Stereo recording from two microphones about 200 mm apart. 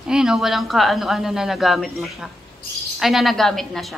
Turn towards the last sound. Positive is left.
turn(degrees=0)  # may be behind; listen again after turning